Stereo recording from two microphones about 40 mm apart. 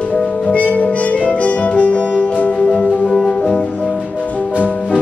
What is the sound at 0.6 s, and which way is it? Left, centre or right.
Music, left.